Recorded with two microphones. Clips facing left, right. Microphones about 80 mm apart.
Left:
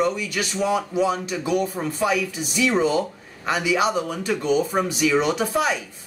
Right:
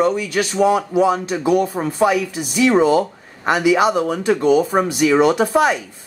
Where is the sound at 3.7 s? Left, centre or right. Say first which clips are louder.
Right 6 dB; right.